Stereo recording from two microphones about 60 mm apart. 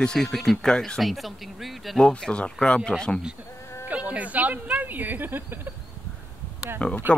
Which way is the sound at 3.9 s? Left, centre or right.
Right.